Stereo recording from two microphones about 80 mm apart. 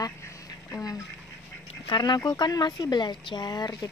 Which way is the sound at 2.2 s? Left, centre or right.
Left.